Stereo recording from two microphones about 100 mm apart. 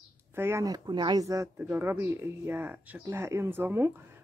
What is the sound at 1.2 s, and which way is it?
Speech, 35° right (ahead or behind).